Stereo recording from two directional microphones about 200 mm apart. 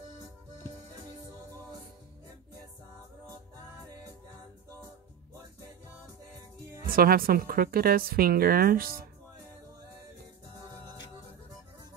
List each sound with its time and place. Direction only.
6.9 s a woman's voice: 45° right (ahead or behind)